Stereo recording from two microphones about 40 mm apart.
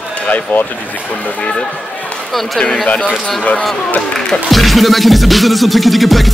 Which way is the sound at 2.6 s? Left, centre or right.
Left.